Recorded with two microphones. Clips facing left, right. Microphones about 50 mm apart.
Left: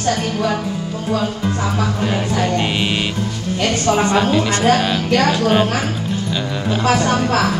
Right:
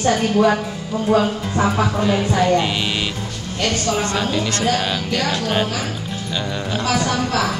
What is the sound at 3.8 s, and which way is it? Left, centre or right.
Speech, left.